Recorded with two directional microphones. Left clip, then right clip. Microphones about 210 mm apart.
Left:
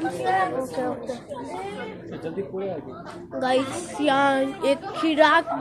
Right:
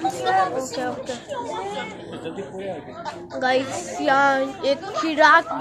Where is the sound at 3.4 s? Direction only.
15° left (ahead or behind).